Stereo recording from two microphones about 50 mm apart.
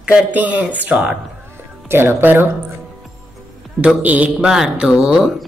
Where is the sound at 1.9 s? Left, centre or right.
Right.